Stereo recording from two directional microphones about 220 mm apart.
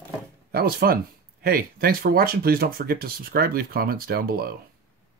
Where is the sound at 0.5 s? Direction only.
45° right (ahead or behind).